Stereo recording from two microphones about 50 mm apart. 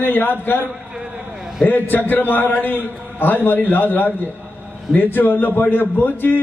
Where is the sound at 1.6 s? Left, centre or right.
Left.